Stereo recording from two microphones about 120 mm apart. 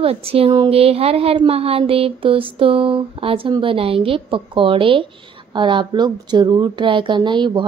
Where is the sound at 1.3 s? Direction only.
55° right (ahead or behind).